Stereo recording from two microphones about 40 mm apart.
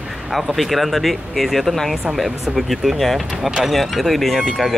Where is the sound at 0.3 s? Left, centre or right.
Centre.